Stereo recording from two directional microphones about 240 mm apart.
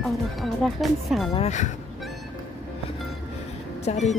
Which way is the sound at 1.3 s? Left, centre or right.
Left.